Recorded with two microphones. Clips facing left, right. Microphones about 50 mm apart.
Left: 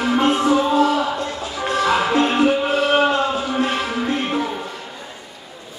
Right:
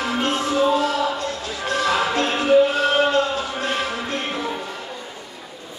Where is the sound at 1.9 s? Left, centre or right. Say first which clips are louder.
Left 4 dB; centre.